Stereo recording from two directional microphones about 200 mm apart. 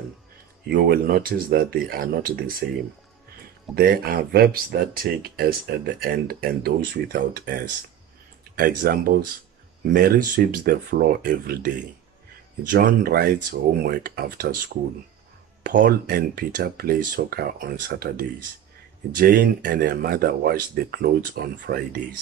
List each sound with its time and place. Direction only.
0.7 s speech: 50° right (ahead or behind)
3.7 s speech: 45° right (ahead or behind)
15.6 s speech: 45° right (ahead or behind)